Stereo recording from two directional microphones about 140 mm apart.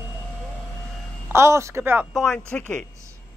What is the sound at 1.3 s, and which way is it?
Speech, 20° right (ahead or behind).